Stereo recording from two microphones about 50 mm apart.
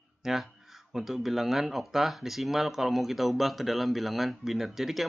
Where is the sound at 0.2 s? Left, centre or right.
Centre.